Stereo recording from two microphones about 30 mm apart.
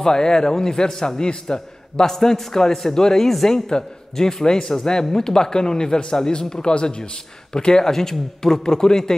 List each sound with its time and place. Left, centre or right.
0.0 s a man's voice: left
2.0 s a man's voice: centre